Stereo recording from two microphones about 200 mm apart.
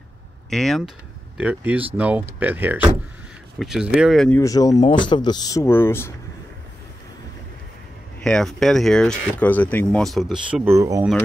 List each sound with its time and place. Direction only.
0.5 s speech: centre (ahead or behind)
4.4 s speech: 15° left (ahead or behind)
8.2 s speech: 5° left (ahead or behind); by 11.1 s 15° right (ahead or behind)